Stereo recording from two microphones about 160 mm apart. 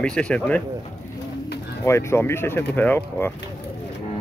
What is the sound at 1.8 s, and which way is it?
Speech, 15° left (ahead or behind).